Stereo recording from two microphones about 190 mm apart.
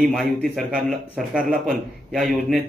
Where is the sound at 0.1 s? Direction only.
Centre (ahead or behind).